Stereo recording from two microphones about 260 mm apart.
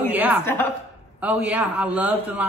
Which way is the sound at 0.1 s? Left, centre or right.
Centre.